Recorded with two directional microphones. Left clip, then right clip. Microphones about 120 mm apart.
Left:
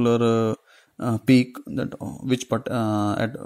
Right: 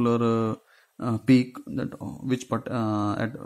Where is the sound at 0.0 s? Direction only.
30° left (ahead or behind).